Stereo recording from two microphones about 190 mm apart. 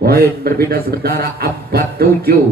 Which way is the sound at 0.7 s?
55° right (ahead or behind).